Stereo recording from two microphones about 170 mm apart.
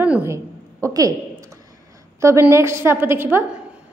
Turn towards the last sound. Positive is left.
turn(degrees=-15)  # may be behind; listen again after turning